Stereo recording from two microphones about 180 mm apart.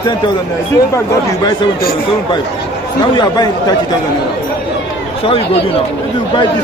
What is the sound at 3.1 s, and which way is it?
Speech, 25° left (ahead or behind).